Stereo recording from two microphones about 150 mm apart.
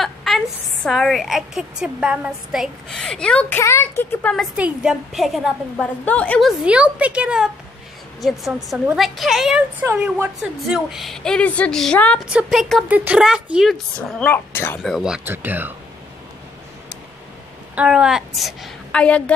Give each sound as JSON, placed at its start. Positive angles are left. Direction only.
{"t": 0.0, "sound": "a sound", "side_deg": 0}
{"t": 0.8, "sound": "a woman's voice", "side_deg": 0}
{"t": 4.6, "sound": "a woman's voice", "side_deg": -5}
{"t": 6.6, "sound": "a woman's voice", "side_deg": -5}
{"t": 12.3, "sound": "a woman's voice", "side_deg": -5}
{"t": 12.8, "sound": "a woman's voice", "side_deg": -10}
{"t": 14.8, "sound": "a woman's voice", "side_deg": -5}
{"t": 17.7, "sound": "a woman's voice", "side_deg": -5}